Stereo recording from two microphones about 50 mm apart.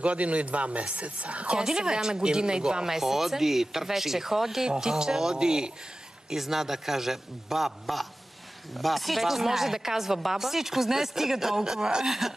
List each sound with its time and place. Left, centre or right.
0.0 s speech: right
1.6 s a man's voice: centre